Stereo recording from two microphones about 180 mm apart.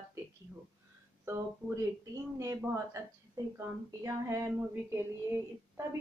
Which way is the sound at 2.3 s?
15° right (ahead or behind).